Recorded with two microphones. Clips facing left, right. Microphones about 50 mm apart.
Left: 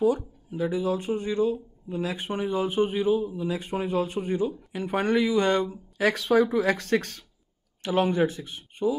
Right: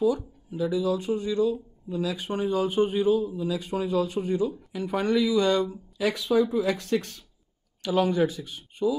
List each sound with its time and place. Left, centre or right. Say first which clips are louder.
0.6 s speech: right 1 dB; left
5.9 s speech: left 2 dB; left
7.8 s speech: even; left